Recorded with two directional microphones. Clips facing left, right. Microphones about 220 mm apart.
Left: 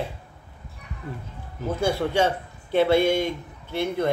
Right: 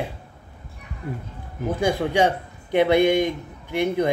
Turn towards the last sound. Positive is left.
turn(degrees=-15)  # may be behind; listen again after turning